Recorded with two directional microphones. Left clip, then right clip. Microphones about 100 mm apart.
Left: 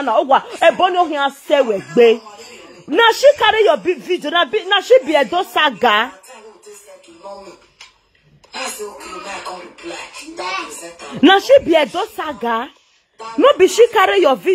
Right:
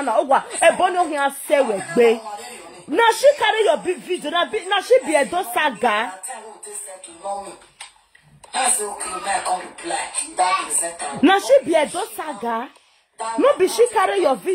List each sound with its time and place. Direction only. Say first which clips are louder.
0.0 s a woman's voice: left 4 dB; 20° left (ahead or behind)
2.2 s a sound: right 4 dB; 20° right (ahead or behind)
3.0 s speech: left 4 dB; 30° left (ahead or behind)
7.2 s dishes: right 6 dB; 20° right (ahead or behind)
8.5 s speech: right 4 dB; 30° right (ahead or behind)
11.1 s speech: left 5 dB; 35° left (ahead or behind)
12.2 s speech: left 5 dB; 45° left (ahead or behind)